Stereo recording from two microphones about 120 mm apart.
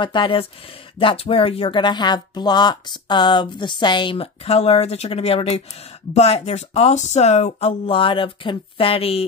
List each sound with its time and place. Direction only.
0.0 s speech: 40° left (ahead or behind); by 7.7 s 70° left (ahead or behind)
7.8 s speech: 45° left (ahead or behind)